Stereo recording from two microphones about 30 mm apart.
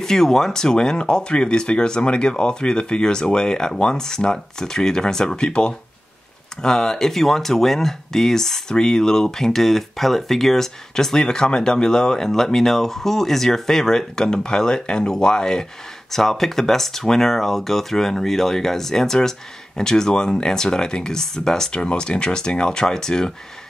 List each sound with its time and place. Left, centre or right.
0.0 s speech: centre
16.1 s speech: centre
21.7 s speech: left